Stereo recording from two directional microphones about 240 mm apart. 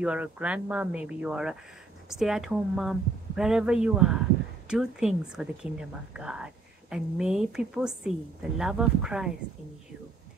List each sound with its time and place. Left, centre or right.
0.0 s a woman's voice: centre